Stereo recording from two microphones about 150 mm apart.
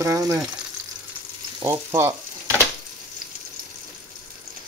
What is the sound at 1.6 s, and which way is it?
Speech, 20° right (ahead or behind).